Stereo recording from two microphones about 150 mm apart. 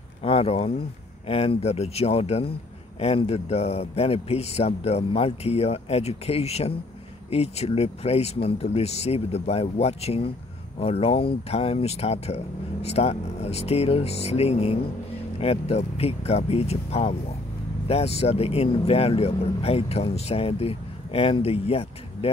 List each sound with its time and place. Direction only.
0.2 s speech: 40° left (ahead or behind)